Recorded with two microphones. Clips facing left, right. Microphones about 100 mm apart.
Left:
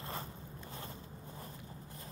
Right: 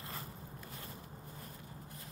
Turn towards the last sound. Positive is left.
turn(degrees=30)  # may be behind; listen again after turning